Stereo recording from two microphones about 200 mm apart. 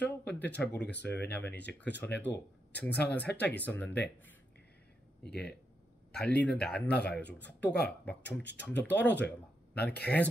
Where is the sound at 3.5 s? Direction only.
10° left (ahead or behind).